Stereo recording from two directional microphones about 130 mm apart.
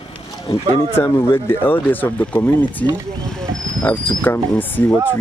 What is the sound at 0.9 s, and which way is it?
Speech, 20° left (ahead or behind).